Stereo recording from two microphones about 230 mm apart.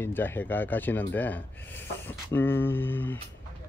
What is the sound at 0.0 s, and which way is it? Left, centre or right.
Speech, centre.